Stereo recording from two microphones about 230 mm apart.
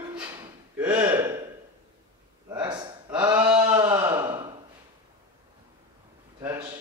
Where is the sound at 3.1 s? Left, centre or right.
Centre.